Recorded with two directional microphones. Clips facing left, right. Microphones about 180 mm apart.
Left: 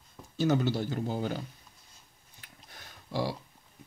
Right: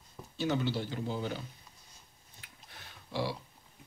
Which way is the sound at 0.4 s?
45° left (ahead or behind).